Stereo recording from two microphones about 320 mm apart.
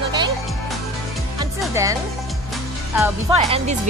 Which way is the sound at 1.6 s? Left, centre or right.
Centre.